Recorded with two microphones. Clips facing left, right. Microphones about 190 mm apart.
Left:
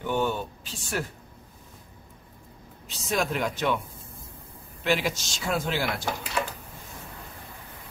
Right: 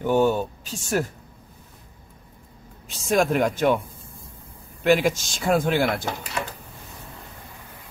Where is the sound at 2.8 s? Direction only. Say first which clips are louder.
Right 7 dB; 50° right (ahead or behind).